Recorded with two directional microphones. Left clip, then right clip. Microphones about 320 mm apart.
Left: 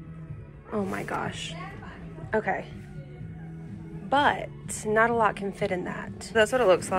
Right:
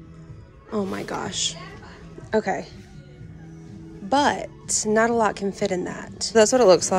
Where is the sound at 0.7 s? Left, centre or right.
Centre.